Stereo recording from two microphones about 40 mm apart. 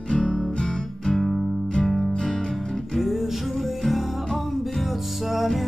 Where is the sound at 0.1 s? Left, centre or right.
Left.